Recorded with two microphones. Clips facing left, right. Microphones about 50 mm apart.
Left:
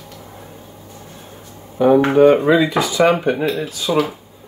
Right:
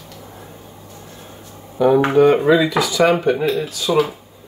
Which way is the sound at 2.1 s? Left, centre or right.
Centre.